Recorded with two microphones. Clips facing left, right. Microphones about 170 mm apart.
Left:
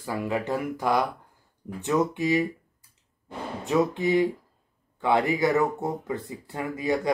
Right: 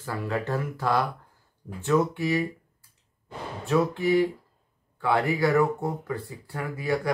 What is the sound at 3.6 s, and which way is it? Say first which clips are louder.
Speech: even; 20° left (ahead or behind).